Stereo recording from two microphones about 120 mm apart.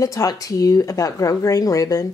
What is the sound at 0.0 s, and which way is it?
Speech, 30° left (ahead or behind).